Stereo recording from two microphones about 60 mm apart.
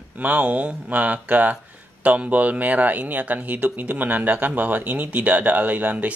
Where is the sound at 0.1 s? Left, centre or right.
Right.